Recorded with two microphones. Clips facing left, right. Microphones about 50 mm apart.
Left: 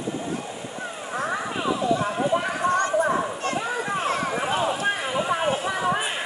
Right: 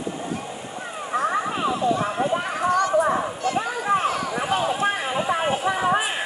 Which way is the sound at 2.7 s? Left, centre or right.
Left.